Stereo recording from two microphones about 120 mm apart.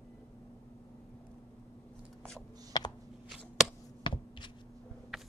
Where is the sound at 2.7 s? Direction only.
30° left (ahead or behind).